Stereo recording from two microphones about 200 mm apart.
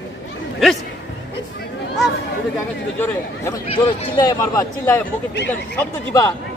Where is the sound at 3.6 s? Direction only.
25° left (ahead or behind).